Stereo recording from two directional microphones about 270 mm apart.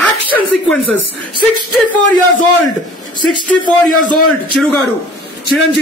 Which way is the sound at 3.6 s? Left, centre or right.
Centre.